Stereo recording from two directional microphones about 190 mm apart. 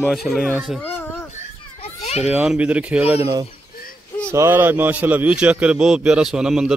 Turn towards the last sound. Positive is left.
turn(degrees=-5)  # may be behind; listen again after turning